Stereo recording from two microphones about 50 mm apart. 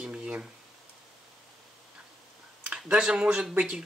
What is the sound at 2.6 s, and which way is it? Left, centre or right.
Speech, centre.